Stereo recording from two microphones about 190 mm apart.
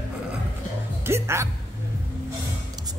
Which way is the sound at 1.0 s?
15° right (ahead or behind).